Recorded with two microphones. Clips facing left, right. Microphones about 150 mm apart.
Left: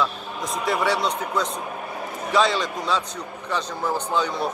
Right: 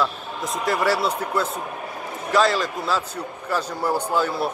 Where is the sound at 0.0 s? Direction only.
Centre (ahead or behind).